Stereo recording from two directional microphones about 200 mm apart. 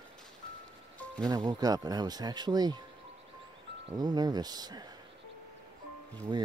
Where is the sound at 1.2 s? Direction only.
20° right (ahead or behind).